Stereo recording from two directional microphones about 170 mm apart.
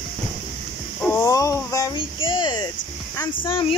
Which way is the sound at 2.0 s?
30° left (ahead or behind).